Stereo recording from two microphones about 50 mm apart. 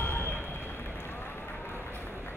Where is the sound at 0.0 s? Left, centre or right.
Left.